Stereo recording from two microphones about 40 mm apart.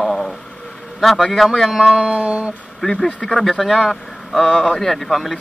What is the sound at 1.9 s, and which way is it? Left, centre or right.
Music, right.